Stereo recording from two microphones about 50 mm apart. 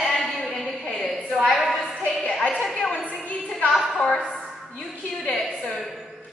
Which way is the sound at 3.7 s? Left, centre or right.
Centre.